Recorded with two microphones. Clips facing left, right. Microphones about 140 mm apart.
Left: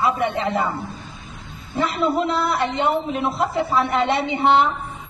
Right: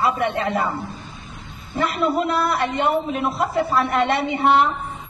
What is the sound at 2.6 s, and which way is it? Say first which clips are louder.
A man's voice: even; 5° right (ahead or behind).